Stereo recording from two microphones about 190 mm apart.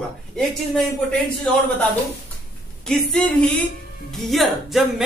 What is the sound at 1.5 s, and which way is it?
Speech, 5° left (ahead or behind).